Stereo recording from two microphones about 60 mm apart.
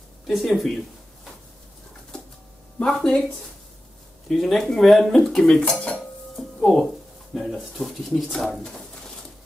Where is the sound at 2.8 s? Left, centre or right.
Centre.